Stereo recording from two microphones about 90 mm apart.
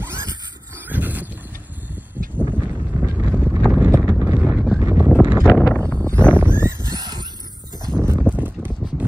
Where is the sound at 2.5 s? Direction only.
20° right (ahead or behind).